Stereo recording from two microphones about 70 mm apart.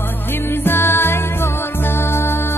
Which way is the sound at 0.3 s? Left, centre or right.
Left.